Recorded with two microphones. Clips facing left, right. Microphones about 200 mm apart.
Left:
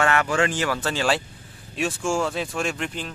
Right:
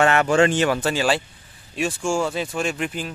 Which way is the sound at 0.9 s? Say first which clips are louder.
Right 2 dB; 5° right (ahead or behind).